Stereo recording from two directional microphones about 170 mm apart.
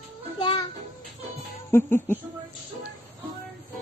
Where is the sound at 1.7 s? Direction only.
15° left (ahead or behind).